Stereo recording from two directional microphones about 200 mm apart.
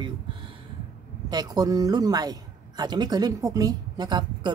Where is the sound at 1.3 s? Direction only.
20° right (ahead or behind).